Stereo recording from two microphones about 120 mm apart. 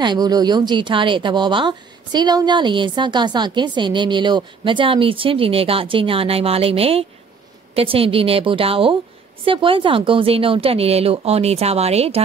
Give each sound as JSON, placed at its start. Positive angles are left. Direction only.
{"t": 0.0, "sound": "a woman's voice", "side_deg": -35}